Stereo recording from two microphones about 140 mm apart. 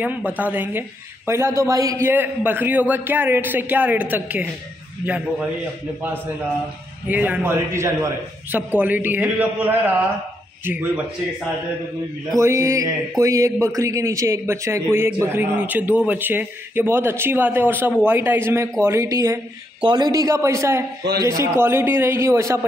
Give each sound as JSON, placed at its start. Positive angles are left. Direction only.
{"t": 0.0, "sound": "a man's voice", "side_deg": -10}
{"t": 7.1, "sound": "a man's voice", "side_deg": -10}
{"t": 12.4, "sound": "a man's voice", "side_deg": -20}